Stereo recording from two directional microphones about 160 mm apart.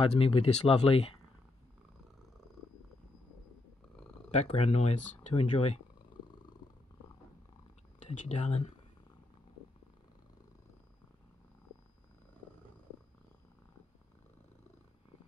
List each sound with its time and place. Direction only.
0.0 s speech: 35° left (ahead or behind)
4.4 s speech: 45° left (ahead or behind)
8.0 s speech: 45° left (ahead or behind)